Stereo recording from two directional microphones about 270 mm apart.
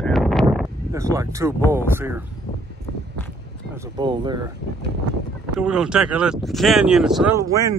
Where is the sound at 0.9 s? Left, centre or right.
Centre.